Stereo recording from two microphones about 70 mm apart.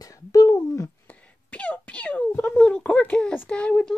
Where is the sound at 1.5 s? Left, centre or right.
Centre.